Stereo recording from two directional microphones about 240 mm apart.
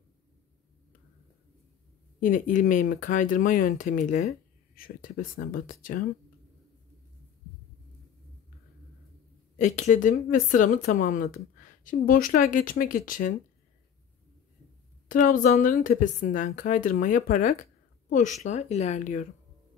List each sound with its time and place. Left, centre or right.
2.1 s speech: left
9.6 s speech: left
15.0 s speech: left